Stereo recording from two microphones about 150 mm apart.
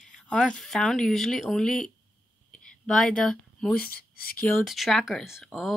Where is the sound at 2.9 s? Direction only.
5° left (ahead or behind).